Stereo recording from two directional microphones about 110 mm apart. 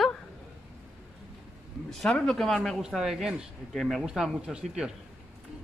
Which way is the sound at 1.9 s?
5° left (ahead or behind).